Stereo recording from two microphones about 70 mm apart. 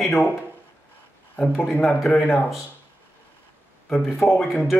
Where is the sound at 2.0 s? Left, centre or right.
Centre.